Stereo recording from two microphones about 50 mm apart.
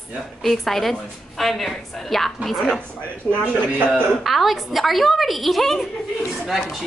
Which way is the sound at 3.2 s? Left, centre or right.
Left.